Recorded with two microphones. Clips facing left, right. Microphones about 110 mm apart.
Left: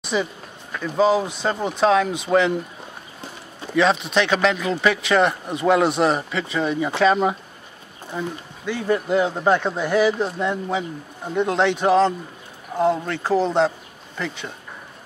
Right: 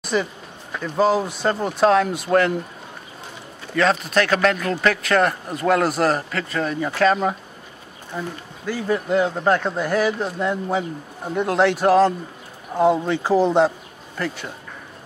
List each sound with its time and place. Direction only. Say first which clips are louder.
0.1 s speech: right 1 dB; 5° left (ahead or behind)
3.7 s speech: even; centre (ahead or behind)
8.6 s speech: left 1 dB; centre (ahead or behind)